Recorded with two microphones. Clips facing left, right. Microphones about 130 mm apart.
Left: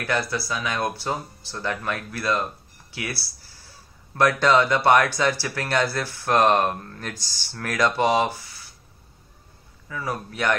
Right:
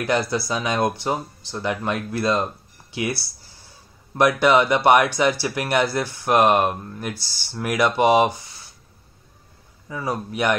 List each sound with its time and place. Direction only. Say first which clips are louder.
0.0 s speech: right 4 dB; 20° right (ahead or behind)
9.8 s speech: right 3 dB; 20° right (ahead or behind)